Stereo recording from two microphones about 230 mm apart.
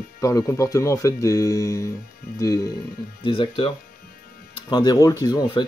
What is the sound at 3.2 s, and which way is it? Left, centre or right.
Speech, left.